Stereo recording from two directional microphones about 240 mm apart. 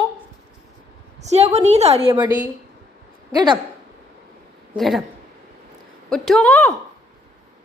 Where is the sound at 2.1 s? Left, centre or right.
Centre.